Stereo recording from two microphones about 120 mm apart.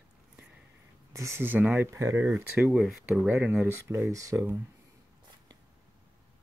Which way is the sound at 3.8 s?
25° right (ahead or behind).